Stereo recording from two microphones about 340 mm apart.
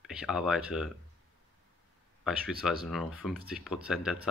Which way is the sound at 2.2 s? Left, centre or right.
Centre.